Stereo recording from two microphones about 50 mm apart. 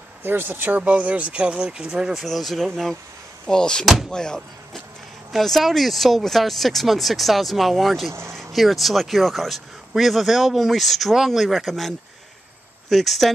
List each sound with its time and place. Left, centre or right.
0.2 s speech: right; by 2.2 s centre
2.2 s speech: centre
3.4 s speech: centre
5.3 s speech: centre
8.1 s speech: right
8.4 s speech: centre
12.9 s speech: centre